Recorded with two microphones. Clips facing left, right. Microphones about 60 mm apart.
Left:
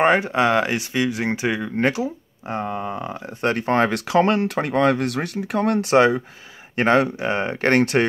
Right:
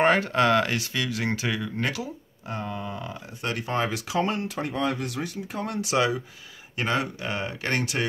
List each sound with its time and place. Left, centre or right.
0.0 s speech: centre; by 8.1 s left